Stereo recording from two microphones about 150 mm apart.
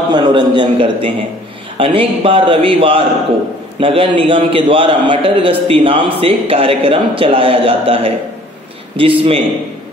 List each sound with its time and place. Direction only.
0.1 s a man's voice: 30° right (ahead or behind)